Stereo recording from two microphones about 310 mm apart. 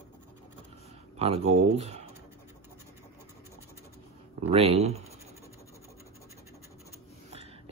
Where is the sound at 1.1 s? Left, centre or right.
Centre.